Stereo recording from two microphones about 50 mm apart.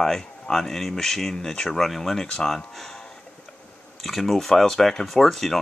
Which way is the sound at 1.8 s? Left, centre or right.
Centre.